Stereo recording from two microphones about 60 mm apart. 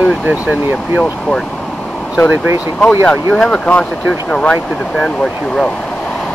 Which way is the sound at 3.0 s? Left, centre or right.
Centre.